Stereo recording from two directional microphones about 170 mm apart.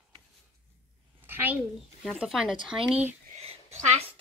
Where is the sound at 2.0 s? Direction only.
Centre (ahead or behind).